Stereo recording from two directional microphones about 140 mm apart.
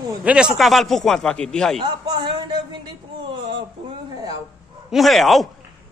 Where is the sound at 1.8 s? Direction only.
35° right (ahead or behind).